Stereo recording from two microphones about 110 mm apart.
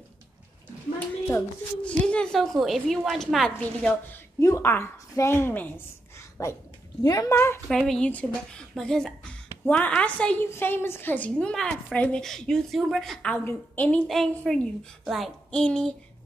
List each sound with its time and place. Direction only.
1.8 s a woman's voice: 10° left (ahead or behind)
4.4 s speech: 25° left (ahead or behind)
6.1 s a sound: 25° left (ahead or behind)
7.0 s speech: 35° left (ahead or behind)
7.3 s speech: 20° left (ahead or behind)
7.6 s a woman's voice: 5° left (ahead or behind)
13.4 s speech: 20° left (ahead or behind)
13.8 s a woman's voice: 5° left (ahead or behind)